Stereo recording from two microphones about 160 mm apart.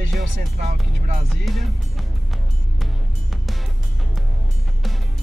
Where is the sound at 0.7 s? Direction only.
55° right (ahead or behind).